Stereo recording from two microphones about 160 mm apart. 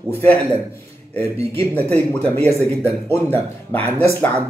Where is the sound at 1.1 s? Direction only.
10° left (ahead or behind).